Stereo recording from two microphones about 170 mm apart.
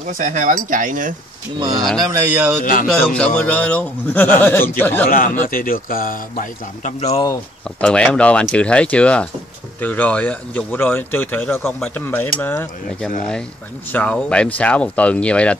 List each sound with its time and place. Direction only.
0.2 s speech: 50° right (ahead or behind)
1.6 s speech: 25° right (ahead or behind)
2.3 s speech: 5° right (ahead or behind)
2.6 s speech: 50° left (ahead or behind)
3.2 s a man's voice: 5° left (ahead or behind)
5.4 s a man's voice: 55° left (ahead or behind); by 7.2 s 40° left (ahead or behind)
7.8 s a man's voice: 5° left (ahead or behind)